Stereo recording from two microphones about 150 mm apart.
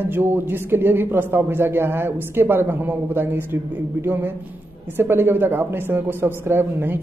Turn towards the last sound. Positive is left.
turn(degrees=-15)  # may be behind; listen again after turning